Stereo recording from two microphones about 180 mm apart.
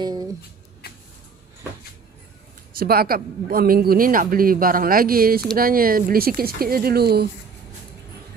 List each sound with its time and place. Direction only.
0.0 s music: 20° right (ahead or behind)
2.8 s speech: 55° right (ahead or behind)